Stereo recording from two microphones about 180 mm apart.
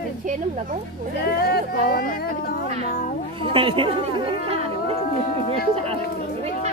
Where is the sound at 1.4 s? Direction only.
55° left (ahead or behind).